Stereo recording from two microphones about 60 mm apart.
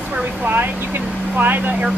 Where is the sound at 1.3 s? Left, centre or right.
Right.